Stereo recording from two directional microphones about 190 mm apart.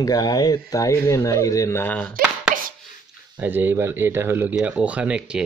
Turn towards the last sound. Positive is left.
turn(degrees=-5)  # may be behind; listen again after turning